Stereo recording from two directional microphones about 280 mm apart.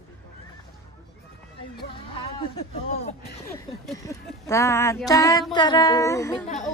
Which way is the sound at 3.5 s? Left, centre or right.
Centre.